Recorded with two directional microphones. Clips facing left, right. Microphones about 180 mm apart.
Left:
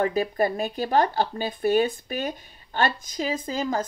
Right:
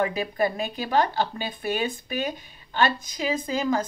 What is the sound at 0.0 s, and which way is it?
Speech, 40° left (ahead or behind).